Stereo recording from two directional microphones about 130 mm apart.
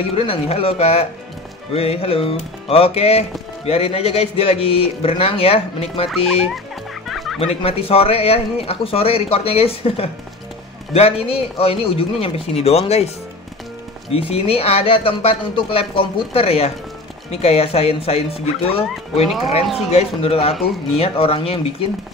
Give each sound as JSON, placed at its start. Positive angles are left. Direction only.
{"t": 0.1, "sound": "music", "side_deg": 45}
{"t": 7.1, "sound": "music", "side_deg": 0}
{"t": 7.3, "sound": "music", "side_deg": 50}
{"t": 14.1, "sound": "music", "side_deg": 50}
{"t": 19.6, "sound": "speech", "side_deg": 0}
{"t": 19.9, "sound": "music", "side_deg": 50}